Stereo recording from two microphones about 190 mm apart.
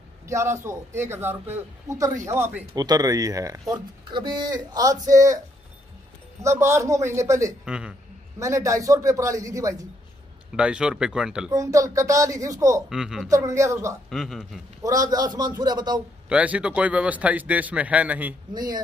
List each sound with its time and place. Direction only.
0.3 s a man's voice: 15° right (ahead or behind)
6.4 s a man's voice: 15° right (ahead or behind)
7.6 s speech: 5° right (ahead or behind)
8.4 s a man's voice: 15° right (ahead or behind)
10.5 s speech: 5° right (ahead or behind)
11.5 s a man's voice: 15° right (ahead or behind)
12.9 s speech: 5° right (ahead or behind)
13.3 s a man's voice: 15° right (ahead or behind)
14.1 s speech: centre (ahead or behind)
14.8 s speech: 20° right (ahead or behind)
16.3 s a man's voice: 5° right (ahead or behind)
18.5 s speech: 20° right (ahead or behind)